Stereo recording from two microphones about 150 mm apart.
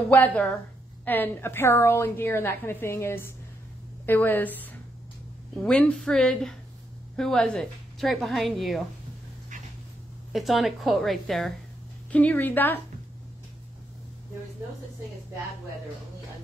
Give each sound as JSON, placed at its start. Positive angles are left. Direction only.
{"t": 0.1, "sound": "a woman's voice", "side_deg": 10}
{"t": 5.6, "sound": "a woman's voice", "side_deg": 5}
{"t": 10.3, "sound": "a woman's voice", "side_deg": 0}